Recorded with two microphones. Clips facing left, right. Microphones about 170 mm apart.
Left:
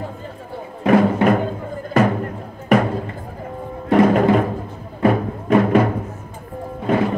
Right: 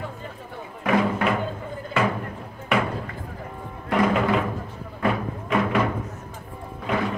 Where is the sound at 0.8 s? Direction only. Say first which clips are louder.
Left 7 dB; 45° left (ahead or behind).